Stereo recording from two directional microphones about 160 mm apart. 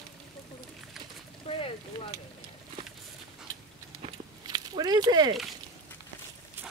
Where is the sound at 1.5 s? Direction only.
40° left (ahead or behind).